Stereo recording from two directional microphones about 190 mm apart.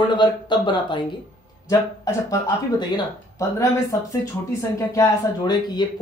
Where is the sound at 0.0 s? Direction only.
25° left (ahead or behind).